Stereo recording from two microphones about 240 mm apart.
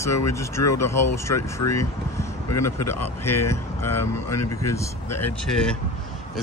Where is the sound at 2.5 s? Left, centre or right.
Left.